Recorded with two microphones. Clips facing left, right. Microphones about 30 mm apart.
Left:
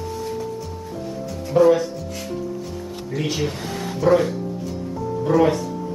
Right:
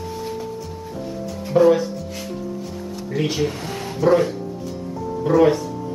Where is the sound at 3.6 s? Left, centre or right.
Right.